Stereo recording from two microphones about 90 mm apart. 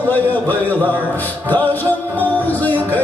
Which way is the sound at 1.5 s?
20° left (ahead or behind).